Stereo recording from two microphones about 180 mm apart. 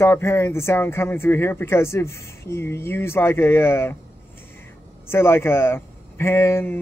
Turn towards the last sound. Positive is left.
turn(degrees=10)  # may be behind; listen again after turning